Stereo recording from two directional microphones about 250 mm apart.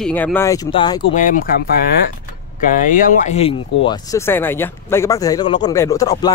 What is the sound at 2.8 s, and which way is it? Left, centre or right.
Speech, left.